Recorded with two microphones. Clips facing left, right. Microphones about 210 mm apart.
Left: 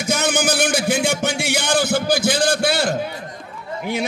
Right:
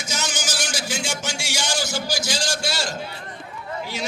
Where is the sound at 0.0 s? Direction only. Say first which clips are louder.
Left 10 dB; 55° left (ahead or behind).